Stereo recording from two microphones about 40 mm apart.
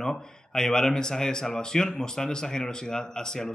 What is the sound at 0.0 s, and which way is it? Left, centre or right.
Speech, centre.